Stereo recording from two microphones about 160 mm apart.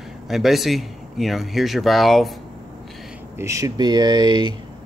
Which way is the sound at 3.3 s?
20° right (ahead or behind).